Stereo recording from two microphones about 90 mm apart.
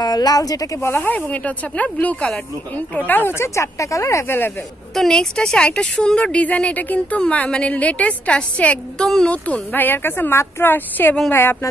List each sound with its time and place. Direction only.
0.0 s a woman's voice: 45° left (ahead or behind)
0.9 s a woman's voice: 20° left (ahead or behind)
4.9 s a woman's voice: 5° left (ahead or behind); by 11.7 s 25° left (ahead or behind)